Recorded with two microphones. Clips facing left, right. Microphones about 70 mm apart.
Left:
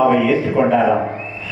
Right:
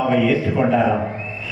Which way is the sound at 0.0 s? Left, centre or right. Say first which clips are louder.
Left 3 dB; left.